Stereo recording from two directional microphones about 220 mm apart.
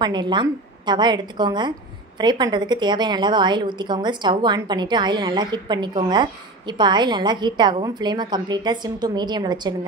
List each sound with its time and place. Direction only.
0.0 s a woman's voice: 20° right (ahead or behind)